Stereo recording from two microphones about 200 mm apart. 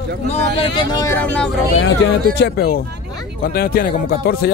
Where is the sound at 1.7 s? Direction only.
60° left (ahead or behind).